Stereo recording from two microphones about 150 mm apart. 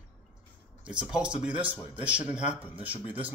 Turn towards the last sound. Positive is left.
turn(degrees=-10)  # may be behind; listen again after turning